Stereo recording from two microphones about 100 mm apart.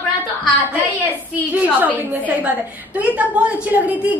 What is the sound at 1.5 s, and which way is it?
A woman's voice, 15° right (ahead or behind).